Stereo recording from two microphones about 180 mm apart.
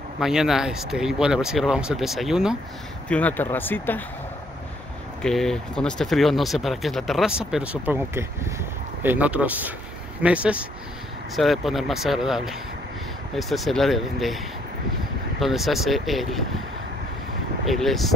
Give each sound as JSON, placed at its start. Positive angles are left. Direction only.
{"t": 0.2, "sound": "speech", "side_deg": 0}
{"t": 3.1, "sound": "speech", "side_deg": 10}
{"t": 5.2, "sound": "speech", "side_deg": 5}
{"t": 17.6, "sound": "speech", "side_deg": 0}